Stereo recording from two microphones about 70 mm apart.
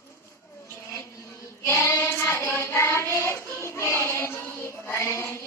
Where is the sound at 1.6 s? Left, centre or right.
Left.